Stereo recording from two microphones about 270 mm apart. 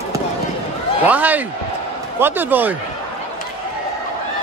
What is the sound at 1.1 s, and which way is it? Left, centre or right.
Speech, centre.